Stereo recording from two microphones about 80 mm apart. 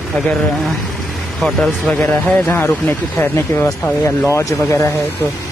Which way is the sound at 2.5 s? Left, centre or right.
Left.